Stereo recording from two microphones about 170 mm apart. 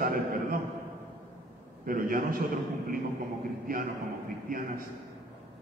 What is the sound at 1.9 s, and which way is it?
Speech, 60° right (ahead or behind).